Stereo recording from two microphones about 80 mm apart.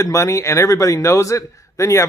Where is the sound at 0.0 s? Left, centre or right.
Left.